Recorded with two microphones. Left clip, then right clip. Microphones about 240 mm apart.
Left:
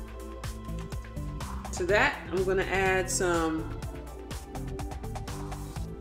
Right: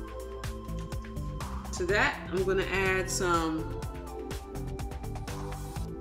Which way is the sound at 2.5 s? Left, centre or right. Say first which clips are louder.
Left 4 dB; right.